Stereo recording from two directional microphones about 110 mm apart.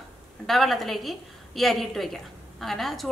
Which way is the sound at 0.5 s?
Centre (ahead or behind).